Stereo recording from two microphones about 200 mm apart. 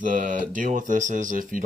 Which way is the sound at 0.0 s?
40° right (ahead or behind).